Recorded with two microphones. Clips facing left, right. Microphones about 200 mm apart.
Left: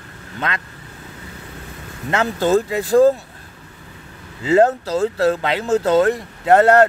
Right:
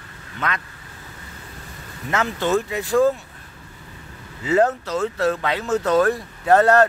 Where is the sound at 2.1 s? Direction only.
30° left (ahead or behind).